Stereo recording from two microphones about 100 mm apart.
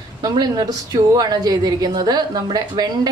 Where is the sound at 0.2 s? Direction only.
40° right (ahead or behind).